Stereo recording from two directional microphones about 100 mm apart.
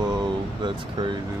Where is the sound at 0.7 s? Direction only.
50° right (ahead or behind).